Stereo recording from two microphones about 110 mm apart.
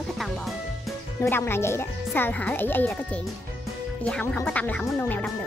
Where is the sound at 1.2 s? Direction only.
20° left (ahead or behind).